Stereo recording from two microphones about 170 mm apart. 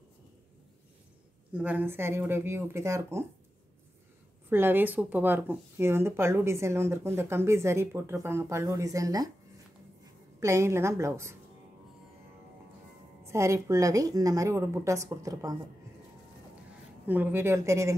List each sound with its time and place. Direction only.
1.5 s speech: 10° right (ahead or behind)
4.5 s speech: 10° right (ahead or behind)
10.4 s speech: 15° right (ahead or behind)
13.2 s a woman's voice: 15° right (ahead or behind)
17.0 s speech: 10° right (ahead or behind)